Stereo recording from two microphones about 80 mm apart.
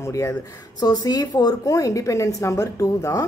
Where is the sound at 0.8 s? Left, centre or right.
Left.